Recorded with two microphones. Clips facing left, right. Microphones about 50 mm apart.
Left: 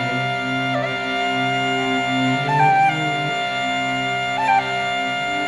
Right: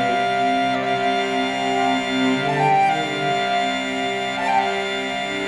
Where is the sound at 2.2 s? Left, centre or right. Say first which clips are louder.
Left 1 dB; left.